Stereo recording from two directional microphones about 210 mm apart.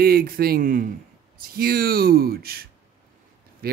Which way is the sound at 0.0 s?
45° right (ahead or behind).